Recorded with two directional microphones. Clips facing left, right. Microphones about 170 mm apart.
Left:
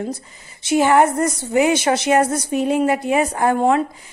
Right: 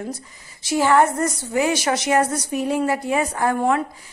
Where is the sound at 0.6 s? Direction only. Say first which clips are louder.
Left 2 dB; 20° left (ahead or behind).